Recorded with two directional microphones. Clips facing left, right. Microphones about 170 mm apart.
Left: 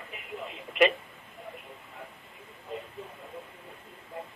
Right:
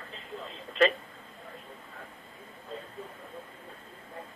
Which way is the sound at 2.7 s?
15° left (ahead or behind).